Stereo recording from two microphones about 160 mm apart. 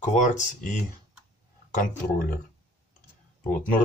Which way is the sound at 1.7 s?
60° left (ahead or behind).